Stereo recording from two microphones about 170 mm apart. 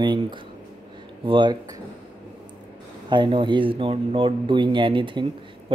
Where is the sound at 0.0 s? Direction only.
25° right (ahead or behind).